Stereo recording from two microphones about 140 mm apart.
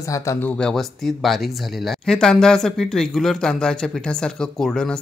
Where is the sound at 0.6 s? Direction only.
5° left (ahead or behind).